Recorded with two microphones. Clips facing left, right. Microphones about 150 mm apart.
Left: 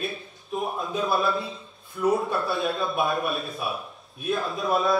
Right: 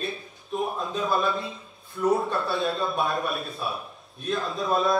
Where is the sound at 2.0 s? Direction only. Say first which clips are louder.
Even; 10° left (ahead or behind).